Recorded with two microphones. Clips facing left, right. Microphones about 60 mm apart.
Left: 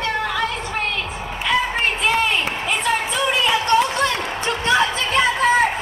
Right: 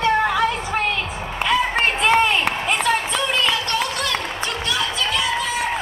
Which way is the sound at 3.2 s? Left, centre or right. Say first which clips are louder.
Left 3 dB; left.